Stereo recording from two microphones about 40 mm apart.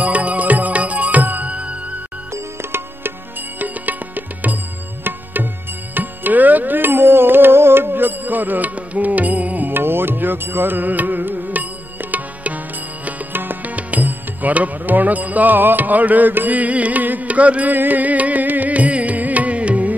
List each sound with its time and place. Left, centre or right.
0.0 s music: right
3.5 s music: right
9.7 s music: right
13.3 s music: right
13.7 s music: right